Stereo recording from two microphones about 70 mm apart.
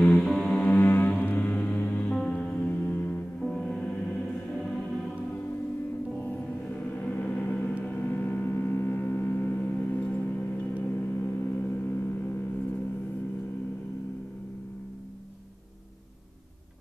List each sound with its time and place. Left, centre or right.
0.4 s music: centre
0.7 s music: left
2.1 s music: centre
3.3 s gong: centre
6.1 s gong: centre